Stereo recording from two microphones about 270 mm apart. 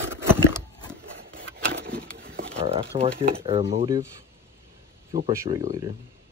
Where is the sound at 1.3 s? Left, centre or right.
Right.